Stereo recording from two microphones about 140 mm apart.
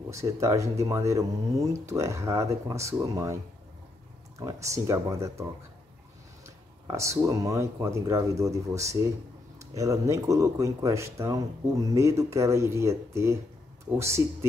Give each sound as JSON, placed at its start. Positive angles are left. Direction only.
{"t": 0.1, "sound": "speech", "side_deg": -20}
{"t": 4.4, "sound": "speech", "side_deg": -25}
{"t": 6.9, "sound": "speech", "side_deg": -20}